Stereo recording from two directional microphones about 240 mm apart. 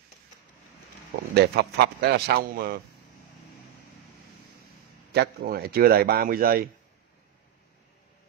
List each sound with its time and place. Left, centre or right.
1.3 s a man's voice: right
5.1 s a man's voice: right